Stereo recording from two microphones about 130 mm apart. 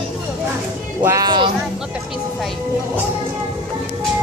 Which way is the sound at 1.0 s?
25° right (ahead or behind).